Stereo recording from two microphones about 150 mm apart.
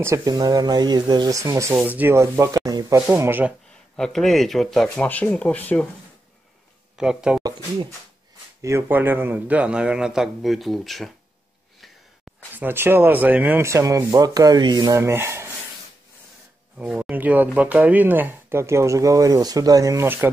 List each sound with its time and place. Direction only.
0.0 s speech: 20° right (ahead or behind)
3.1 s speech: 15° right (ahead or behind)
3.9 s speech: centre (ahead or behind)
7.0 s speech: 5° right (ahead or behind)
8.6 s speech: 15° right (ahead or behind); by 11.1 s centre (ahead or behind)
12.5 s speech: 15° right (ahead or behind)
16.7 s speech: 10° right (ahead or behind)